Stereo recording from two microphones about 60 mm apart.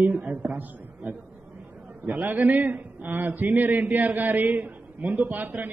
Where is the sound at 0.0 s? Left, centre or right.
Right.